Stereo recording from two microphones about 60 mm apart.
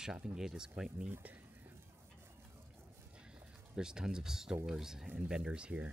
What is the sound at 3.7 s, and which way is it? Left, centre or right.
Speech, centre.